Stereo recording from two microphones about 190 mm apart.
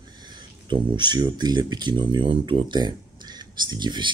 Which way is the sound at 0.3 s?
25° right (ahead or behind).